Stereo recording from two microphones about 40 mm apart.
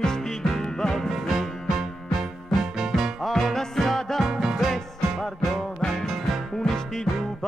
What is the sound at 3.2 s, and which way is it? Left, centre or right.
Music, centre.